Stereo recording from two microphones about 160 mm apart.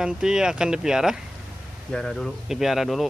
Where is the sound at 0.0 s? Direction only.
5° right (ahead or behind).